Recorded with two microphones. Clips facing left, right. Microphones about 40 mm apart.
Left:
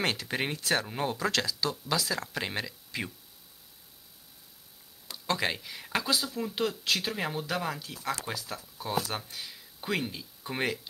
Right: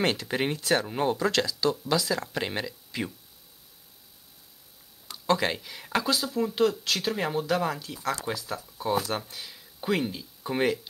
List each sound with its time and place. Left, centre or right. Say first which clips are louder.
0.0 s speech: right 4 dB; centre
5.0 s speech: right 5 dB; centre